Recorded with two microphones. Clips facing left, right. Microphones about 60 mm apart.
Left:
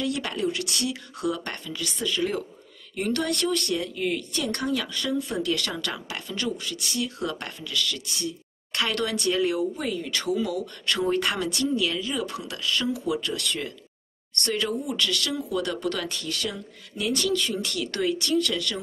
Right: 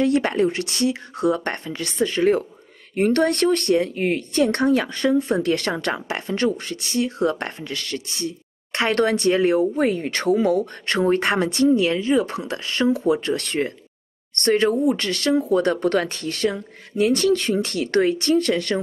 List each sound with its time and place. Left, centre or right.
0.0 s speech: right